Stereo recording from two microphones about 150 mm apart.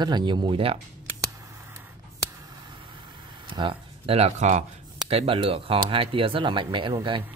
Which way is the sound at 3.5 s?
35° right (ahead or behind).